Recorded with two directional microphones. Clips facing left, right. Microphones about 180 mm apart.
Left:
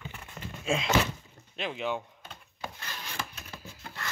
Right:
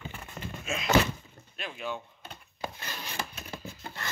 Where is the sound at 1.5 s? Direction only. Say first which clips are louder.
Left 4 dB; 20° left (ahead or behind).